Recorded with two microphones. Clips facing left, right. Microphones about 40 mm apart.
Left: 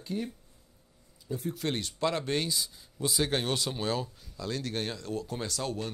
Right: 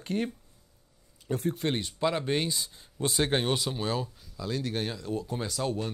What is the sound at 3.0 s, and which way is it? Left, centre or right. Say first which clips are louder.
Speech: right 2 dB; right.